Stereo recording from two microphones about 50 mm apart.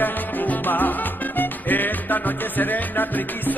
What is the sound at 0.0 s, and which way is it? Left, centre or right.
Music, left.